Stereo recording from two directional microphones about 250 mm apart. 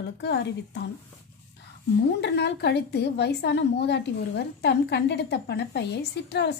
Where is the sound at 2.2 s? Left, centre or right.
Left.